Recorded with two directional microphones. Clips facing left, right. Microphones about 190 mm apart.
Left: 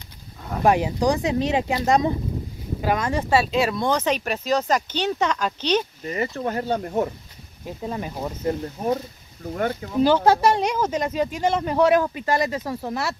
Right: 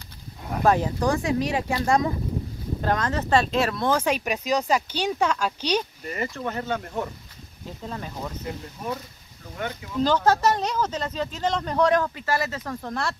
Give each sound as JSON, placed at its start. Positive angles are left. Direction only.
{"t": 0.7, "sound": "speech", "side_deg": 15}
{"t": 6.3, "sound": "speech", "side_deg": 35}
{"t": 7.8, "sound": "speech", "side_deg": 15}
{"t": 8.5, "sound": "speech", "side_deg": 40}
{"t": 10.0, "sound": "speech", "side_deg": 10}